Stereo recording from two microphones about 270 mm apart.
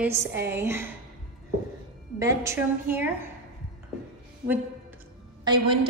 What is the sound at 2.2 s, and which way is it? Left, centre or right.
A woman's voice, centre.